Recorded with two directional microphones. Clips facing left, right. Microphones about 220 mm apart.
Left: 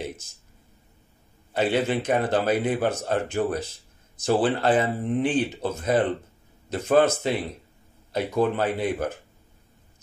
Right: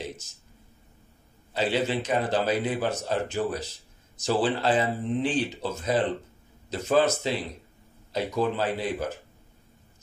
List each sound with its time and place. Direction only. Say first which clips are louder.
1.5 s a man's voice: left 3 dB; 55° left (ahead or behind)